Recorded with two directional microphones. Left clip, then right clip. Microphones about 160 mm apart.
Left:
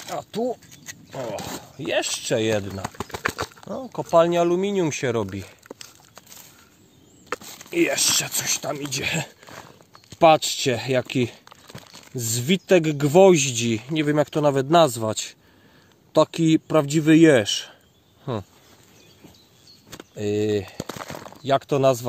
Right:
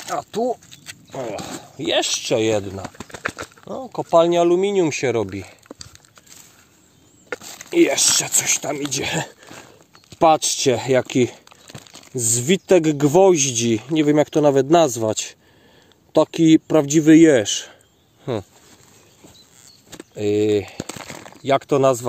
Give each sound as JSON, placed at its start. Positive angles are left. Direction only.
{"t": 0.1, "sound": "speech", "side_deg": -50}
{"t": 1.9, "sound": "speech", "side_deg": -35}
{"t": 3.0, "sound": "bird flight", "side_deg": 40}
{"t": 3.6, "sound": "speech", "side_deg": -20}
{"t": 5.7, "sound": "a sound", "side_deg": 15}
{"t": 7.4, "sound": "speech", "side_deg": -30}
{"t": 12.4, "sound": "speech", "side_deg": -30}
{"t": 20.2, "sound": "speech", "side_deg": -30}